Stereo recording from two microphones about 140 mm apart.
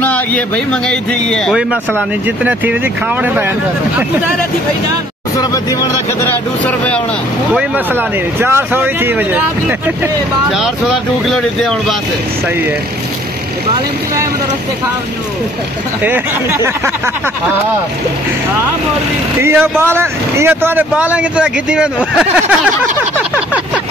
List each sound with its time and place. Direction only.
0.0 s a sound: 10° left (ahead or behind)
0.8 s speech: 5° left (ahead or behind)
2.2 s speech: 10° right (ahead or behind)
5.4 s speech: 25° left (ahead or behind)
6.2 s speech: 10° left (ahead or behind)
7.5 s speech: 15° right (ahead or behind)
11.2 s speech: centre (ahead or behind)
16.0 s speech: 15° right (ahead or behind)
19.4 s speech: 15° right (ahead or behind)